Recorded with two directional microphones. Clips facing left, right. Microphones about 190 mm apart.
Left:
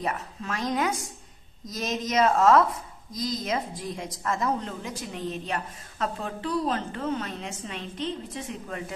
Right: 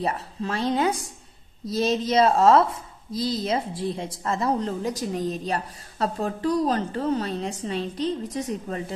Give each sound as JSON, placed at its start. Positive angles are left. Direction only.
{"t": 0.0, "sound": "a woman's voice", "side_deg": -30}